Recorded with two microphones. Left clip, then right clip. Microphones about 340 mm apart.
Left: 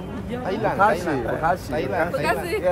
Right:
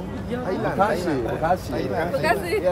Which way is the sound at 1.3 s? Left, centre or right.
Centre.